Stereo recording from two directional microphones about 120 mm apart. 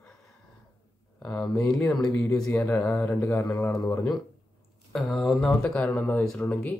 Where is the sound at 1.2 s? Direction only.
5° left (ahead or behind).